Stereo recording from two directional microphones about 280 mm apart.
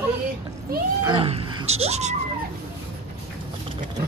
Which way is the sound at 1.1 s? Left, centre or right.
Centre.